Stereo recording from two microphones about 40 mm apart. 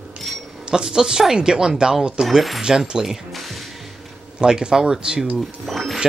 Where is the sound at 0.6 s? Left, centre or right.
Centre.